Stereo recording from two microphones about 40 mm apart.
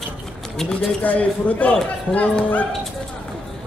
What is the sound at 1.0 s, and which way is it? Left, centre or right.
Speech, left.